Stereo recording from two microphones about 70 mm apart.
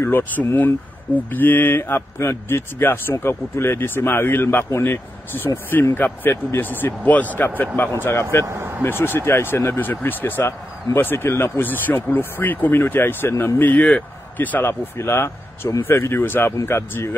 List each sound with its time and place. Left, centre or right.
0.0 s speech: left
7.9 s speech: left
8.5 s speech: right
8.8 s speech: left
15.0 s speech: left